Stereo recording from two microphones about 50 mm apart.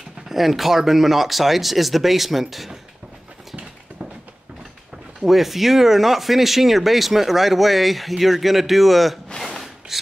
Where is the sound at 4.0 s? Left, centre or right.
Right.